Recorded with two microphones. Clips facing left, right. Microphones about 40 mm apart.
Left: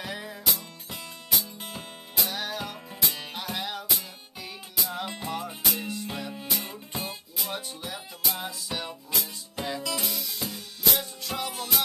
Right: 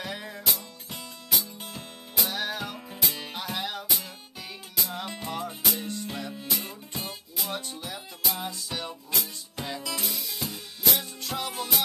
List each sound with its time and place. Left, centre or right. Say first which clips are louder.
0.0 s music: even; centre
7.0 s music: left 1 dB; centre